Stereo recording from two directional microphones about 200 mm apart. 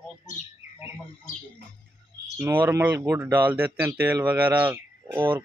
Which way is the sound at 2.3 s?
10° right (ahead or behind).